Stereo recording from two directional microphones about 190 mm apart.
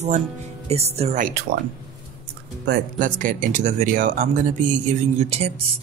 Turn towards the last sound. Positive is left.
turn(degrees=-35)  # may be behind; listen again after turning